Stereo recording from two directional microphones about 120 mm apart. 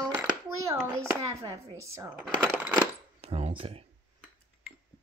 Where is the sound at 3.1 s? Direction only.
60° right (ahead or behind).